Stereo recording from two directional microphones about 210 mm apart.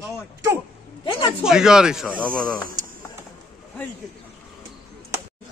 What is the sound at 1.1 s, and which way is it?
Speech, 25° left (ahead or behind).